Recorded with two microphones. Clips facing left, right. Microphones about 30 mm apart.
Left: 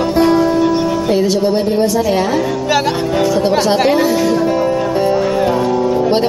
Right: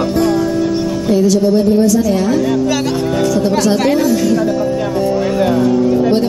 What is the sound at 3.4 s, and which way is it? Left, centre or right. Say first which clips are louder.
Speech: left 1 dB; left.